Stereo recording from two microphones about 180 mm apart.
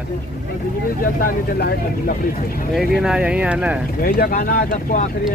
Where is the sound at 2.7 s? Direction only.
Centre (ahead or behind).